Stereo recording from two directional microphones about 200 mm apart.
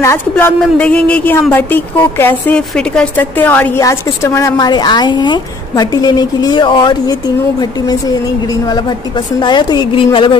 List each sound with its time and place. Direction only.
0.0 s speech: 15° left (ahead or behind)
9.4 s a woman's voice: 20° left (ahead or behind)